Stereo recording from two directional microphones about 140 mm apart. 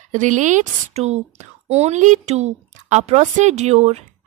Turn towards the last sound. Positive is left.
turn(degrees=-50)  # may be behind; listen again after turning